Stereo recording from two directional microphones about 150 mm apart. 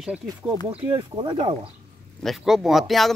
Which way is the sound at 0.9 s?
30° right (ahead or behind).